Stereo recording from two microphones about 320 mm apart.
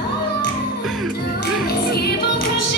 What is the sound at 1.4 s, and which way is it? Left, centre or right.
Music, left.